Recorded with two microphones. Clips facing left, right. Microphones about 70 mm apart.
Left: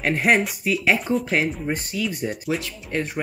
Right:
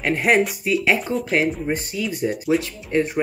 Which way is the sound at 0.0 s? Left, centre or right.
Centre.